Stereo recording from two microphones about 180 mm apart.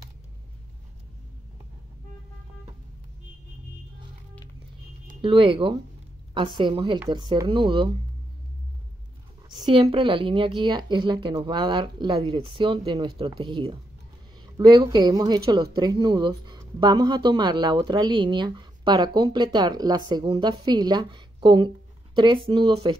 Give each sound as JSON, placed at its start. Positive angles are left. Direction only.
{"t": 5.2, "sound": "speech", "side_deg": -30}
{"t": 9.5, "sound": "speech", "side_deg": -25}